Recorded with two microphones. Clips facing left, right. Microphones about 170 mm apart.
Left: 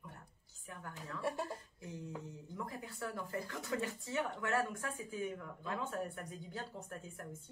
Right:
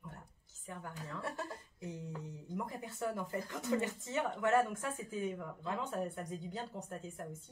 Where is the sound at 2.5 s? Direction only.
20° right (ahead or behind).